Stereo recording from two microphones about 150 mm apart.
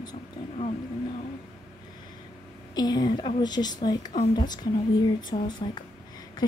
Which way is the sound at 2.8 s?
25° left (ahead or behind).